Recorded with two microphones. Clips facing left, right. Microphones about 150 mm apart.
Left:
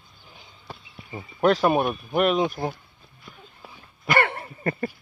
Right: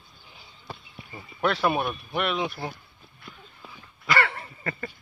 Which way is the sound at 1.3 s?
40° left (ahead or behind).